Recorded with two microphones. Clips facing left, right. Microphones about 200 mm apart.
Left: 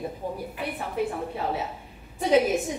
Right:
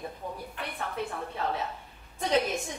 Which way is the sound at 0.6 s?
5° left (ahead or behind).